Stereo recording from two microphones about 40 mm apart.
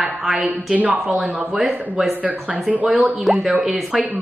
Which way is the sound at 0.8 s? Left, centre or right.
Right.